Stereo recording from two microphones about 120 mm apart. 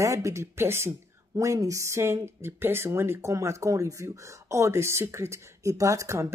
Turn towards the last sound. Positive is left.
turn(degrees=-25)  # may be behind; listen again after turning